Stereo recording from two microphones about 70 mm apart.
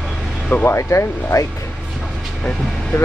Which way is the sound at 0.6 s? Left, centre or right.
Left.